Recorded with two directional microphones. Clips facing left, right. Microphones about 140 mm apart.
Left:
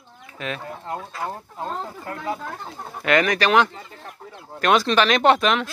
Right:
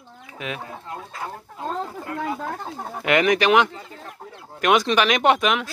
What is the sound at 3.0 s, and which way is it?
Speech, 20° right (ahead or behind).